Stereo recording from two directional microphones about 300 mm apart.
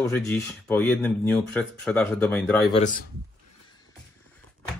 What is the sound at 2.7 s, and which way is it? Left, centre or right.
Speech, left.